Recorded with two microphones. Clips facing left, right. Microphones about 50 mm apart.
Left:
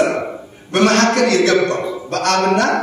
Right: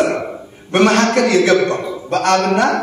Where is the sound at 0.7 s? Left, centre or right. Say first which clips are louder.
Right 1 dB; centre.